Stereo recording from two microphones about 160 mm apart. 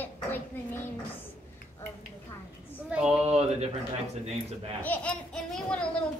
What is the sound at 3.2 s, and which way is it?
Speech, 45° right (ahead or behind).